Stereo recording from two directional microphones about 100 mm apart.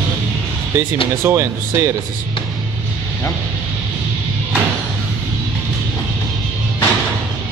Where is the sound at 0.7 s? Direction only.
25° right (ahead or behind).